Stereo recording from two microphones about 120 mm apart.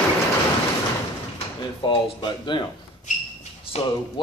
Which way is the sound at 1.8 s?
40° left (ahead or behind).